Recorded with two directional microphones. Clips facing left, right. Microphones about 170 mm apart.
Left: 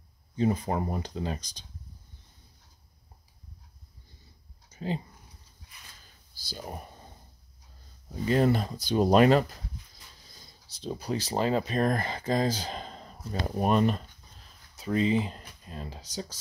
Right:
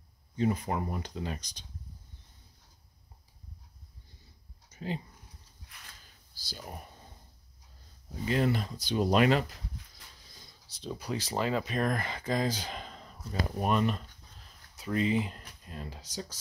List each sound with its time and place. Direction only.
0.4 s speech: 30° left (ahead or behind)
4.7 s speech: 30° left (ahead or behind)
6.5 s speech: 40° left (ahead or behind)
8.3 s speech: 40° left (ahead or behind)
10.8 s speech: 35° left (ahead or behind)